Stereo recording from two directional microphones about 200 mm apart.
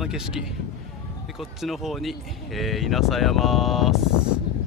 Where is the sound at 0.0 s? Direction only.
5° right (ahead or behind).